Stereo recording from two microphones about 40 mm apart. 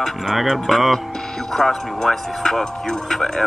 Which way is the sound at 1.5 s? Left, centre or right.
Centre.